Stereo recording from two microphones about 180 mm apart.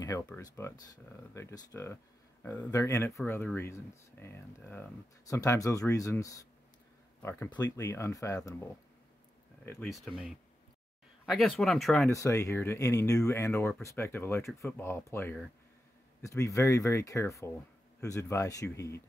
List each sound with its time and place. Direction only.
0.4 s speech: 20° left (ahead or behind)
9.9 s speech: centre (ahead or behind)
12.1 s speech: 15° left (ahead or behind)